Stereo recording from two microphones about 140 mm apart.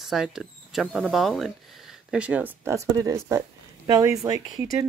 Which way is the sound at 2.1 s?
10° right (ahead or behind).